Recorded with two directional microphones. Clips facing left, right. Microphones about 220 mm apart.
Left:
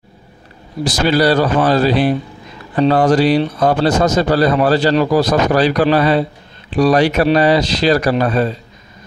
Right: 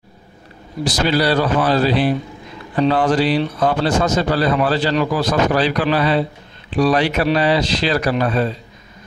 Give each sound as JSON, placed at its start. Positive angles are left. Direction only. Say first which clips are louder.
{"t": 0.8, "sound": "a man's voice", "louder": "left 4 dB", "side_deg": 45}